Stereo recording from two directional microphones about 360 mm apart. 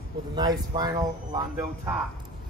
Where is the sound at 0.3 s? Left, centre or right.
Centre.